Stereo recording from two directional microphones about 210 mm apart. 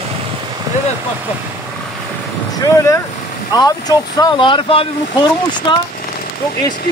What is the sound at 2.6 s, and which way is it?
Speech, 15° left (ahead or behind).